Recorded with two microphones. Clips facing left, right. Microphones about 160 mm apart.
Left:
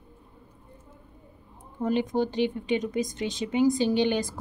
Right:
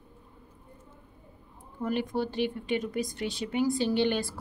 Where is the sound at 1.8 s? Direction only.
20° left (ahead or behind).